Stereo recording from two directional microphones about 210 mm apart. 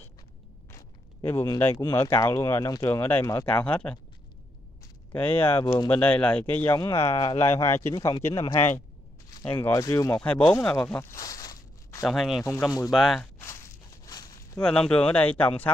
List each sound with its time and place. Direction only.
0.7 s speech: 15° left (ahead or behind)
5.1 s speech: 10° left (ahead or behind)
9.6 s speech: 15° left (ahead or behind)
12.1 s speech: centre (ahead or behind)
12.4 s speech: 15° left (ahead or behind)
12.9 s speech: centre (ahead or behind)
14.0 s a sound: 15° left (ahead or behind)
14.6 s speech: 5° left (ahead or behind)